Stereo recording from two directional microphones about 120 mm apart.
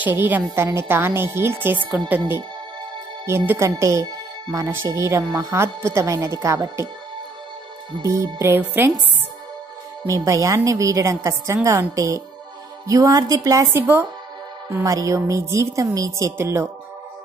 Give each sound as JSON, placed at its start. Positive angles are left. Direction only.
{"t": 0.0, "sound": "a woman's voice", "side_deg": -15}
{"t": 8.0, "sound": "speech", "side_deg": -25}
{"t": 10.0, "sound": "speech", "side_deg": -25}